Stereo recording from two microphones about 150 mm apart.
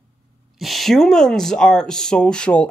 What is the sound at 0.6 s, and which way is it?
A man's voice, centre (ahead or behind).